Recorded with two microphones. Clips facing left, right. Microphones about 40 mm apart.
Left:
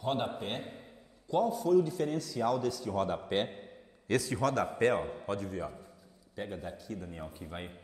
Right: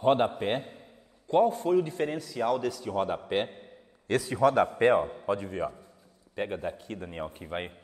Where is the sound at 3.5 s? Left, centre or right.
Centre.